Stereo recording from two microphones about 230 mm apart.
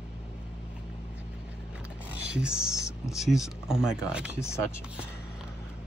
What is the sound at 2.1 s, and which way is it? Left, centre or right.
Mechanisms, centre.